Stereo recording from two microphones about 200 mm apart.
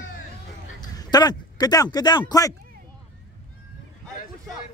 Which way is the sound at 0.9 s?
20° left (ahead or behind).